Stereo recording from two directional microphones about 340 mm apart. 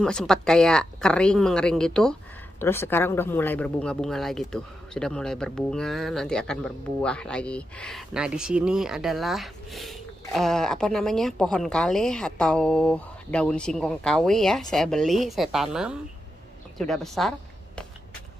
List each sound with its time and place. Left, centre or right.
0.0 s speech: centre